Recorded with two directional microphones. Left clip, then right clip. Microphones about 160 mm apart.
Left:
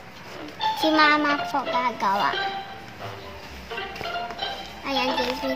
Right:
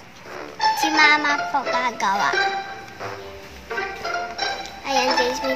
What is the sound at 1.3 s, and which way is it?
Music, 30° right (ahead or behind).